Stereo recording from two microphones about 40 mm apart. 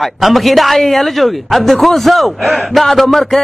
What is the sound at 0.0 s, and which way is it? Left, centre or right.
Speech, centre.